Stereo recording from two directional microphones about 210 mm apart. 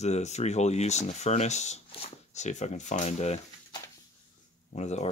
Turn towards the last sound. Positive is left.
turn(degrees=35)  # may be behind; listen again after turning